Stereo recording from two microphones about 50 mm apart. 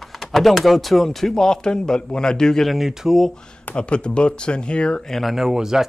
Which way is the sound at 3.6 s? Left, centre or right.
Left.